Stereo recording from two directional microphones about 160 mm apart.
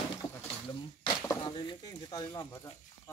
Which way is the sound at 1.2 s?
30° left (ahead or behind).